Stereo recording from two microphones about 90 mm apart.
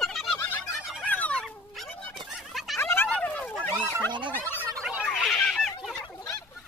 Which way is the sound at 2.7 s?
25° left (ahead or behind).